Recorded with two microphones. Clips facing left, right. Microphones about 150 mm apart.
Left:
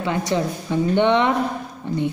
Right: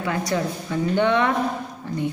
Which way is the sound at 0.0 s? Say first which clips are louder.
Left 2 dB; 25° left (ahead or behind).